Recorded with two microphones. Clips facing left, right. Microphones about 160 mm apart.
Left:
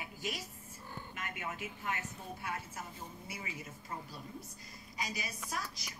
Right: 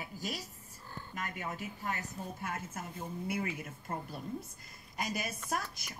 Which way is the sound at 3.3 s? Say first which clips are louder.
Right 10 dB; 55° right (ahead or behind).